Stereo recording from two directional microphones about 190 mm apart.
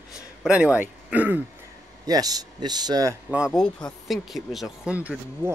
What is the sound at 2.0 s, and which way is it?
Speech, 20° right (ahead or behind).